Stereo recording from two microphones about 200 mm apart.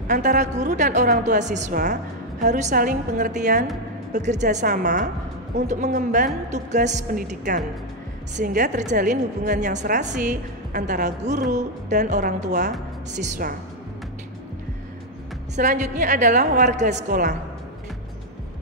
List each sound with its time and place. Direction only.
0.1 s a woman's voice: 40° right (ahead or behind)
15.5 s a woman's voice: 40° right (ahead or behind)